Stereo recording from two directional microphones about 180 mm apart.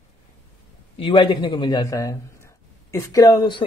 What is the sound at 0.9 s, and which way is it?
Speech, 30° left (ahead or behind).